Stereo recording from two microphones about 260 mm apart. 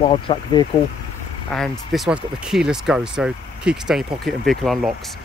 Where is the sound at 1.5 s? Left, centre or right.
Centre.